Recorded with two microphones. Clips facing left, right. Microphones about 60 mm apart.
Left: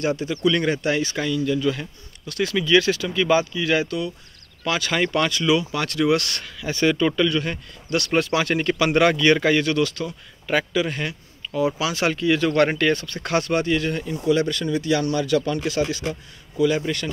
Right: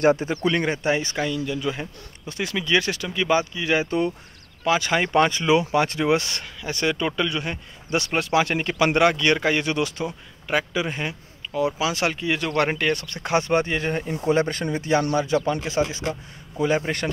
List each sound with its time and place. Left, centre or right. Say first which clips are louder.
0.0 s speech: right 2 dB; right
0.6 s speech: left 1 dB; centre
2.4 s speech: left 4 dB; centre
6.2 s speech: left 2 dB; centre
13.5 s speech: left 1 dB; right
16.5 s speech: left 2 dB; right